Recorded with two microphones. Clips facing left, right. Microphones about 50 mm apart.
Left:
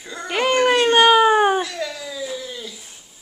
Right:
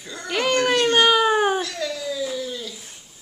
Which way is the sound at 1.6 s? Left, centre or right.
Centre.